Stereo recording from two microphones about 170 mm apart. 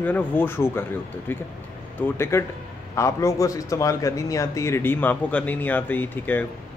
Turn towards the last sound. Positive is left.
turn(degrees=10)  # may be behind; listen again after turning